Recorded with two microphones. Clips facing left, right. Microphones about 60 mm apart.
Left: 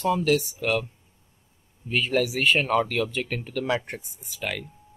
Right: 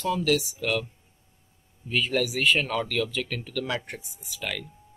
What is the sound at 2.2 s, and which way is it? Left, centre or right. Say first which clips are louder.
Speech: even; centre.